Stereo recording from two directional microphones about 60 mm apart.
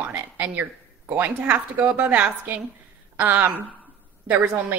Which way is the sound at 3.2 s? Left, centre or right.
Right.